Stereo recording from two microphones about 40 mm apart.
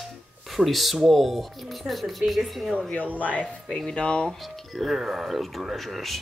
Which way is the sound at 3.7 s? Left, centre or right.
Centre.